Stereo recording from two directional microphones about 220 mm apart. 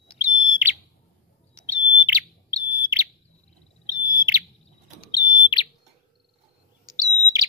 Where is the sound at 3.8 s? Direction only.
15° right (ahead or behind).